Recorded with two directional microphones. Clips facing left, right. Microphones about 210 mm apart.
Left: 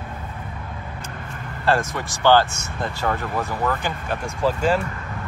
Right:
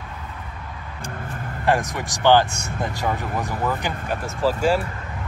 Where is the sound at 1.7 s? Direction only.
15° right (ahead or behind).